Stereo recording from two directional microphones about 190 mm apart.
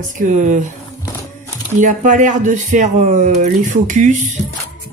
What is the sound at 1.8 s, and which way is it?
Speech, 45° right (ahead or behind).